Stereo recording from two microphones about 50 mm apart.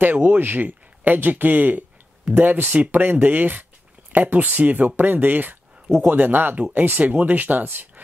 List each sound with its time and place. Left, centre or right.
0.0 s speech: right